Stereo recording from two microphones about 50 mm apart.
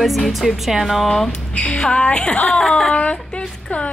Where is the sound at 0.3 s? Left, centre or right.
Centre.